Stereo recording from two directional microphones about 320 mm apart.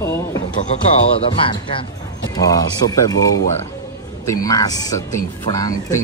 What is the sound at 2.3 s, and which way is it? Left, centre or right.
Speech, centre.